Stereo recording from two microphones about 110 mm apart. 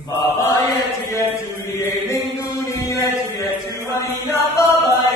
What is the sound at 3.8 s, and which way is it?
Mantra, 25° left (ahead or behind).